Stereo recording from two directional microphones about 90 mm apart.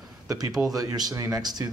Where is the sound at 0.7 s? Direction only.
45° right (ahead or behind).